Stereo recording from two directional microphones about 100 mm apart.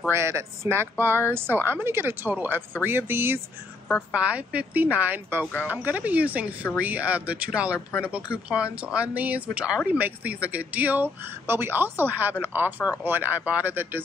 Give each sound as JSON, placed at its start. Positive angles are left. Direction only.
{"t": 0.1, "sound": "a woman's voice", "side_deg": -25}
{"t": 8.8, "sound": "a woman's voice", "side_deg": -15}